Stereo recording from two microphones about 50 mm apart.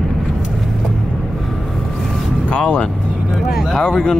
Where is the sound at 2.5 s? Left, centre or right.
Left.